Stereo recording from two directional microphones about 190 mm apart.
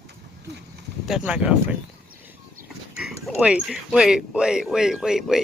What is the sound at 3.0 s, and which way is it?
Speech, 5° right (ahead or behind).